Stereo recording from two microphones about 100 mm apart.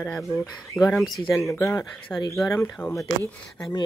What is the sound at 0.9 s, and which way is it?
Speech, centre (ahead or behind).